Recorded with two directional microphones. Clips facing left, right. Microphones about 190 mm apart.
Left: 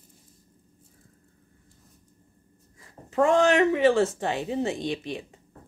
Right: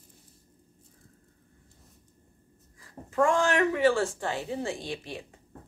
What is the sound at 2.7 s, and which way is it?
Speech, 20° left (ahead or behind).